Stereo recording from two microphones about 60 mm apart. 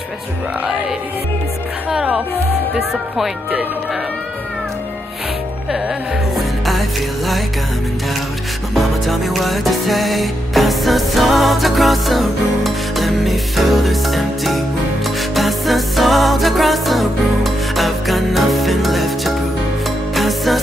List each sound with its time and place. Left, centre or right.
1.9 s music: centre
6.3 s music: centre
8.7 s music: centre